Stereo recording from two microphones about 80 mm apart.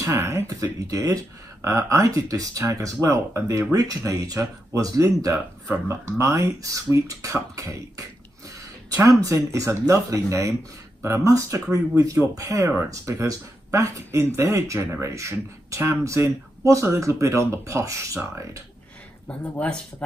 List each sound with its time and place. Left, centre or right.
0.0 s speech: right
0.5 s speech: right
9.2 s speech: right
19.2 s speech: centre